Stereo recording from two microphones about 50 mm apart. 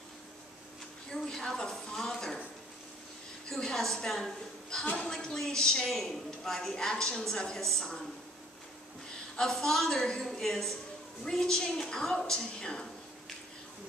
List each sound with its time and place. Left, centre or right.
1.1 s a woman's voice: centre
3.4 s a woman's voice: centre
4.8 s a woman's voice: left
5.1 s a woman's voice: centre
9.4 s a woman's voice: centre